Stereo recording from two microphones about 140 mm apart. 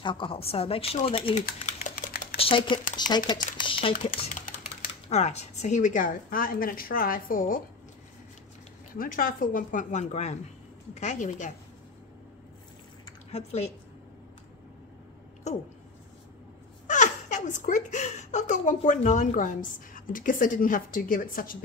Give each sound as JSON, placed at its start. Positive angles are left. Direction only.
{"t": 0.0, "sound": "speech", "side_deg": 35}
{"t": 1.4, "sound": "speech", "side_deg": 85}
{"t": 2.3, "sound": "speech", "side_deg": 40}
{"t": 5.1, "sound": "a woman's voice", "side_deg": 55}
{"t": 8.9, "sound": "a woman's voice", "side_deg": 90}
{"t": 13.3, "sound": "speech", "side_deg": 50}
{"t": 15.5, "sound": "a sound", "side_deg": 55}
{"t": 16.8, "sound": "a sound", "side_deg": 60}
{"t": 18.7, "sound": "a woman's voice", "side_deg": 60}